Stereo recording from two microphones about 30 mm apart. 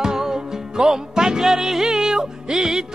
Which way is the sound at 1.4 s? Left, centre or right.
Centre.